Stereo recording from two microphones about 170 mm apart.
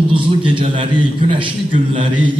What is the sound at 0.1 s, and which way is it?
A man's voice, 30° right (ahead or behind).